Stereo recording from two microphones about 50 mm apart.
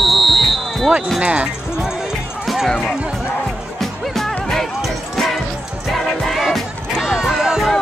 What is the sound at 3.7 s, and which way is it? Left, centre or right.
Music, centre.